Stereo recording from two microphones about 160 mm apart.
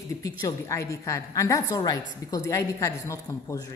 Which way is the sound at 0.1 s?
20° left (ahead or behind).